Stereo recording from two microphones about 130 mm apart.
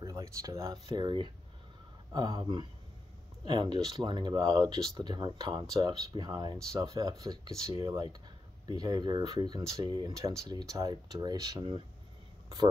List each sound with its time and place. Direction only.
0.0 s speech: 25° right (ahead or behind)
0.9 s speech: 35° right (ahead or behind)